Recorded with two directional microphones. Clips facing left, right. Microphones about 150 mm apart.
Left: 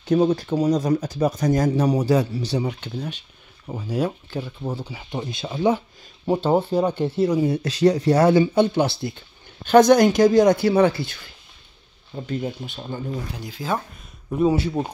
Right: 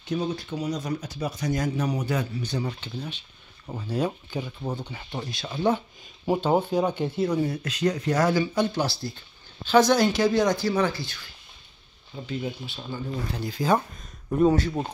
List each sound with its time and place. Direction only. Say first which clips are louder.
0.1 s speech: left 10 dB; 50° left (ahead or behind); by 2.6 s 35° left (ahead or behind)
3.6 s speech: left 3 dB; 10° left (ahead or behind)
5.2 s speech: left 4 dB; 20° left (ahead or behind)
6.2 s speech: left 3 dB; centre (ahead or behind)
7.4 s speech: left 7 dB; 30° left (ahead or behind)
9.7 s speech: left 6 dB; 50° left (ahead or behind)
12.3 s speech: left 4 dB; 45° left (ahead or behind)
12.7 s speech: left 3 dB; 25° left (ahead or behind)
13.3 s speech: right 6 dB; 10° left (ahead or behind)